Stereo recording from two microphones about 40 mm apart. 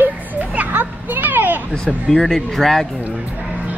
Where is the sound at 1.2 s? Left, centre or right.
Right.